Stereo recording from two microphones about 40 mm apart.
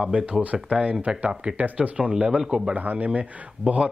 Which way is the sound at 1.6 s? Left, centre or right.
Right.